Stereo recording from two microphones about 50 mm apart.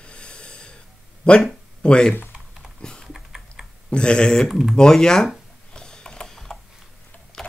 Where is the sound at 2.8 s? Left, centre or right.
Centre.